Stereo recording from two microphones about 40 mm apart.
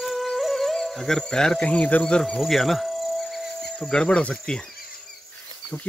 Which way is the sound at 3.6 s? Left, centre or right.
Centre.